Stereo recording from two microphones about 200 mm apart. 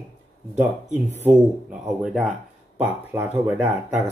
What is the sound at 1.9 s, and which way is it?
Speech, centre (ahead or behind).